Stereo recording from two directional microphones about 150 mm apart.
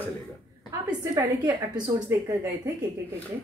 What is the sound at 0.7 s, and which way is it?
A woman's voice, 25° right (ahead or behind).